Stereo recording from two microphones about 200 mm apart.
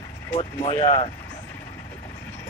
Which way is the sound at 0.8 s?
30° left (ahead or behind).